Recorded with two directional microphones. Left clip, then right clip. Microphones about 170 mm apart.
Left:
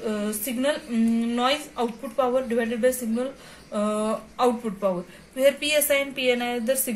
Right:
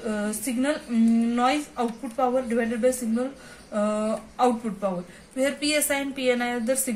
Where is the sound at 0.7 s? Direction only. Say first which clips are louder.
Right 1 dB; centre (ahead or behind).